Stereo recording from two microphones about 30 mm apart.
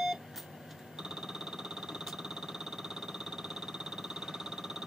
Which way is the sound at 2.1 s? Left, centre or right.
Centre.